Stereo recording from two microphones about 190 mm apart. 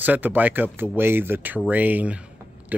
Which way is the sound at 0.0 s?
10° right (ahead or behind).